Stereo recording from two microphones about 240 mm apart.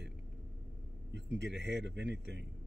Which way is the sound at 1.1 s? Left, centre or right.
Right.